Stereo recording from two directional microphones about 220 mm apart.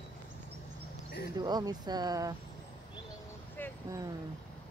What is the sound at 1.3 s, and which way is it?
Speech, 20° right (ahead or behind).